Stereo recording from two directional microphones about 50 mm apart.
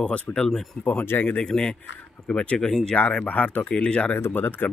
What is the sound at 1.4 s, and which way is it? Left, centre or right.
Speech, centre.